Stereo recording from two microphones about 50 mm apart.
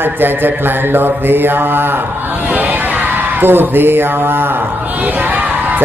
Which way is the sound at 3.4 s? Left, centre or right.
Right.